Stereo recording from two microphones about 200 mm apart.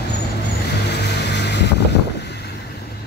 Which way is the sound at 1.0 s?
55° left (ahead or behind).